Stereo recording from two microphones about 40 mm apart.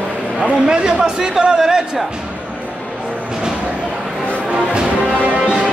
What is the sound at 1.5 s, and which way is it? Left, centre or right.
Music, centre.